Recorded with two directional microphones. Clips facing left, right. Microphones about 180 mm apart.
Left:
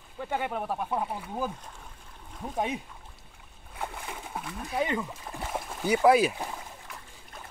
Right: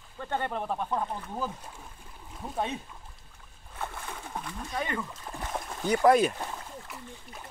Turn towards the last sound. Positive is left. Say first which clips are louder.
# even
turn(degrees=10)  # may be behind; listen again after turning